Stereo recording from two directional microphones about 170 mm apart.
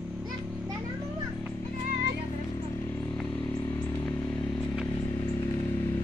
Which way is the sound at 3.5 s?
20° left (ahead or behind).